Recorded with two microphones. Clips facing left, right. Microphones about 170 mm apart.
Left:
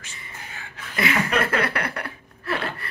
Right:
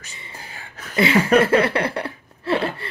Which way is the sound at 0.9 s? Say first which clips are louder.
Right 7 dB; 30° right (ahead or behind).